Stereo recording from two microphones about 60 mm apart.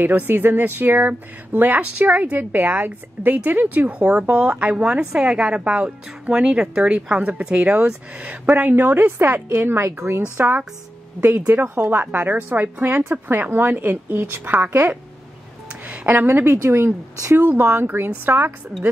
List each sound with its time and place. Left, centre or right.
0.0 s speech: right
9.8 s speech: right
15.9 s speech: right
17.4 s speech: right